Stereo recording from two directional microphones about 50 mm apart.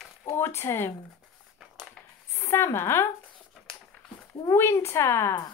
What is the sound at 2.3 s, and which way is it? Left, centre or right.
Speech, left.